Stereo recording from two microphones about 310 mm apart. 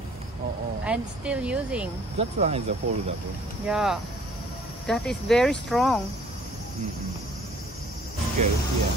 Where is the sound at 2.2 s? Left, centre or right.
Centre.